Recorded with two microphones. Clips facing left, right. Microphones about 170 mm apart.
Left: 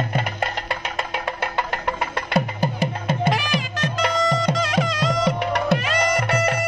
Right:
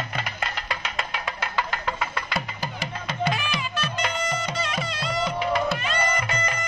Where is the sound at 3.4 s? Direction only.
90° left.